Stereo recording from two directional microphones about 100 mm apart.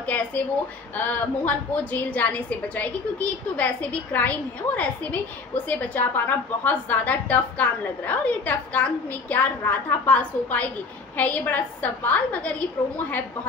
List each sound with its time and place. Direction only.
0.0 s a woman's voice: 15° left (ahead or behind)